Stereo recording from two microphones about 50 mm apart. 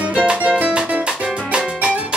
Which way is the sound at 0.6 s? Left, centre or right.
Right.